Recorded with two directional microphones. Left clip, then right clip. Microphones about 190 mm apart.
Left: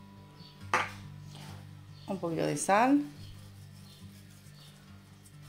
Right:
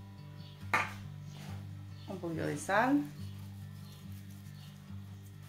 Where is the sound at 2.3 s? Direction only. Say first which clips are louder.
Left 4 dB; 35° left (ahead or behind).